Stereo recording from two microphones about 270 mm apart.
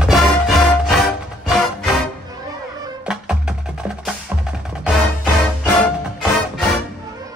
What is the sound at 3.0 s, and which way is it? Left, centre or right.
Music, centre.